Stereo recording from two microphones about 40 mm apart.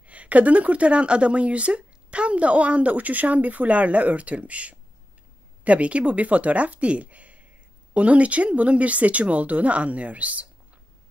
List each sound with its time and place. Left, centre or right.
0.0 s a woman's voice: right